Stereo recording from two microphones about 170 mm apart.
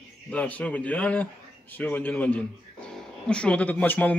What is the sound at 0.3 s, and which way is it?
Speech, 10° left (ahead or behind).